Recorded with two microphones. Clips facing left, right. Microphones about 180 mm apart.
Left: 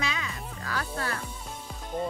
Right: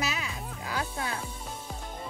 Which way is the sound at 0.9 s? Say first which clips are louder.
Left 1 dB; 70° left (ahead or behind).